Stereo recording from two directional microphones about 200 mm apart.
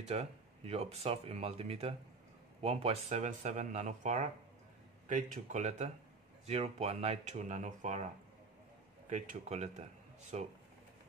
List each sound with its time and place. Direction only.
0.0 s speech: 30° right (ahead or behind)
9.1 s speech: 35° right (ahead or behind)